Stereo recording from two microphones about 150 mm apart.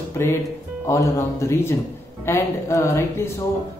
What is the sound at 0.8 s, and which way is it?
A woman's voice, 20° left (ahead or behind).